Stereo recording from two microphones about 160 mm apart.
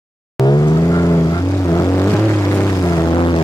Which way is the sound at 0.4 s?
20° left (ahead or behind).